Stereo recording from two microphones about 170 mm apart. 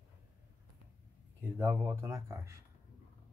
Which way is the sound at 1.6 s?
10° right (ahead or behind).